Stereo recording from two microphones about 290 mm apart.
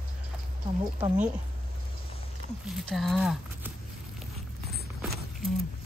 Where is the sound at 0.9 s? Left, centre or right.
Centre.